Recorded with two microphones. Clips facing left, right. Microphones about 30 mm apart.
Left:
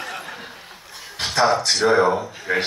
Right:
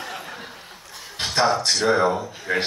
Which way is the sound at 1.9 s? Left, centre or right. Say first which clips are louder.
Left 3 dB; centre.